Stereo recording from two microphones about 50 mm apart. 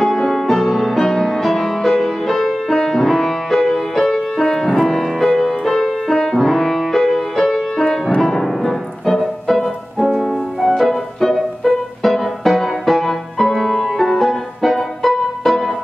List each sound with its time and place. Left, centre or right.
0.2 s music: centre